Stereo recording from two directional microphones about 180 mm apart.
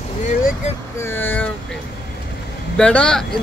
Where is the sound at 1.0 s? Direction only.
10° left (ahead or behind).